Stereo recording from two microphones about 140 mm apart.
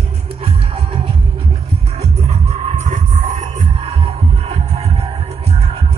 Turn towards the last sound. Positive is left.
turn(degrees=-45)  # may be behind; listen again after turning